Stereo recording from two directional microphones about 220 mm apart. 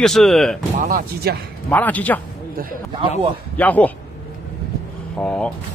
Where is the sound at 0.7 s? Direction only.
40° right (ahead or behind).